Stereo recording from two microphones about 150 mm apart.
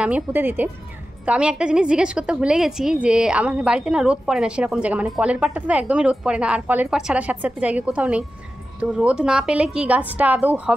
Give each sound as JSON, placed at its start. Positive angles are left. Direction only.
{"t": 0.0, "sound": "a woman's voice", "side_deg": -10}